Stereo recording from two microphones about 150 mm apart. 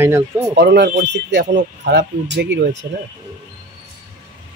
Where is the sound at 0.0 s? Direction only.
15° right (ahead or behind).